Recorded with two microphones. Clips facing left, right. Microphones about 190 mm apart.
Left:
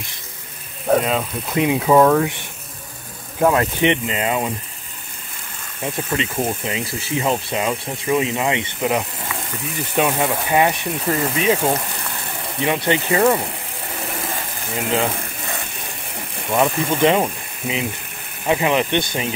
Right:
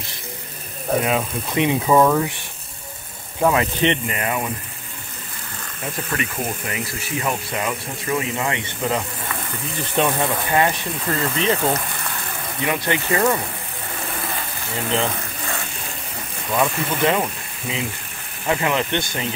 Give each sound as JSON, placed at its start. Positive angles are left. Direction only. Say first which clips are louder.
{"t": 1.0, "sound": "speech", "louder": "even", "side_deg": -5}
{"t": 1.6, "sound": "speech", "louder": "left 2 dB", "side_deg": 5}
{"t": 3.3, "sound": "speech", "louder": "left 2 dB", "side_deg": 5}
{"t": 3.8, "sound": "speech", "louder": "left 2 dB", "side_deg": 20}
{"t": 6.1, "sound": "speech", "louder": "left 4 dB", "side_deg": 20}
{"t": 14.8, "sound": "speech", "louder": "left 2 dB", "side_deg": 10}
{"t": 16.4, "sound": "speech", "louder": "left 3 dB", "side_deg": 25}